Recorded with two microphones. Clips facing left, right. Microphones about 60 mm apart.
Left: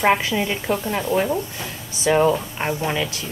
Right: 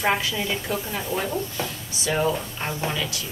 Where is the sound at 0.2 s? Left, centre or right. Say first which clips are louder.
Left 4 dB; left.